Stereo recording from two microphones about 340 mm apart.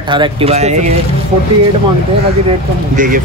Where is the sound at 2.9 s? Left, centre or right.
Right.